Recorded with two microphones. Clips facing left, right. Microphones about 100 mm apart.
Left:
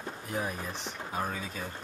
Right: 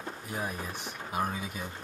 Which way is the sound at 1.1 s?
15° right (ahead or behind).